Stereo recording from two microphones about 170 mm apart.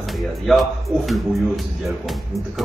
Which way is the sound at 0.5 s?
Centre (ahead or behind).